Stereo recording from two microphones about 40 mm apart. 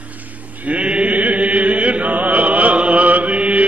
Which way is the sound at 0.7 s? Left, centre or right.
Right.